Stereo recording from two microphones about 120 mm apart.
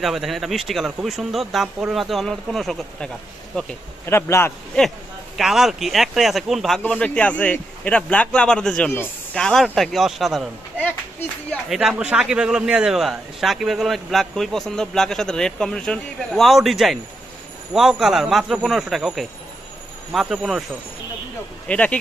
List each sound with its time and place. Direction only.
0.0 s a man's voice: centre (ahead or behind)
4.0 s speech: 20° left (ahead or behind)
5.4 s a man's voice: 5° right (ahead or behind)
6.8 s a man's voice: 10° left (ahead or behind)
11.7 s a man's voice: 5° right (ahead or behind)
21.6 s a man's voice: 10° left (ahead or behind)